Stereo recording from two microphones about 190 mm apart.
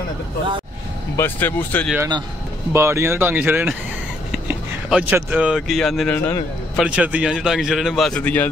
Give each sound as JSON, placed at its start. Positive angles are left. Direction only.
{"t": 1.1, "sound": "speech", "side_deg": 10}
{"t": 2.0, "sound": "speech", "side_deg": -20}
{"t": 6.8, "sound": "a man's voice", "side_deg": -5}